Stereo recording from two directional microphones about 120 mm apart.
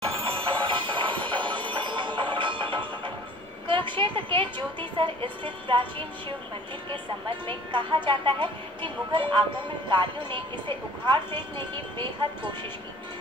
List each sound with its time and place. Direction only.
0.0 s music: 50° right (ahead or behind)
3.6 s speech: 45° right (ahead or behind)